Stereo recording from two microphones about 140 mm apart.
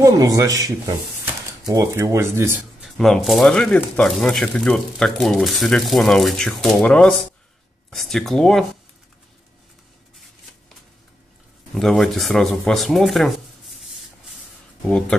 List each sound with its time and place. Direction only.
0.0 s speech: 25° right (ahead or behind)
2.8 s speech: centre (ahead or behind)
11.7 s speech: centre (ahead or behind)
14.8 s speech: 5° left (ahead or behind)